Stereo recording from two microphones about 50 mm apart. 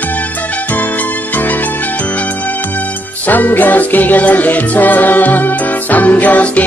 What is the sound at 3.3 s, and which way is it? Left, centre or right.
Music, left.